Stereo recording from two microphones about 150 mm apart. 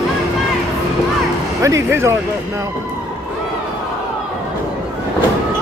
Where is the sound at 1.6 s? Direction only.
20° right (ahead or behind).